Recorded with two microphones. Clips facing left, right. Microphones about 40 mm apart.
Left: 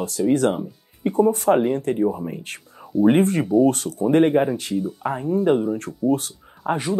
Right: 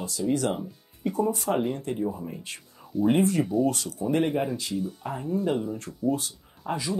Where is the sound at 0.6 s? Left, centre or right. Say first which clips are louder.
Left 6 dB; left.